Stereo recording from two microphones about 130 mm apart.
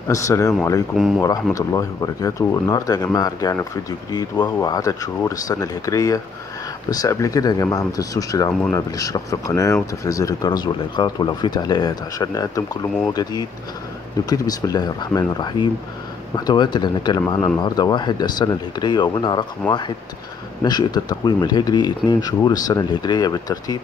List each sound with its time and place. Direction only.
0.1 s speech: 25° left (ahead or behind)
0.9 s speech: centre (ahead or behind)
1.2 s speech: 25° left (ahead or behind)
20.6 s speech: 30° left (ahead or behind)